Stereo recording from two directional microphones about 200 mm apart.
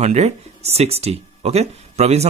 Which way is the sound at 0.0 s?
35° right (ahead or behind).